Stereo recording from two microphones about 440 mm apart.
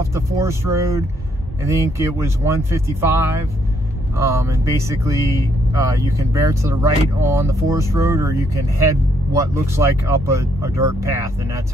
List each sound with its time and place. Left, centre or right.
0.1 s speech: centre